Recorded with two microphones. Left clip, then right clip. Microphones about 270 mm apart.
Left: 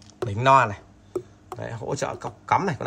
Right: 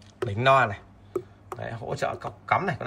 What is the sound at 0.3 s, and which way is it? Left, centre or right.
A man's voice, centre.